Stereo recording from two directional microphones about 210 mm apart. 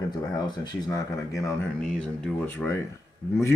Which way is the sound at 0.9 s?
15° left (ahead or behind).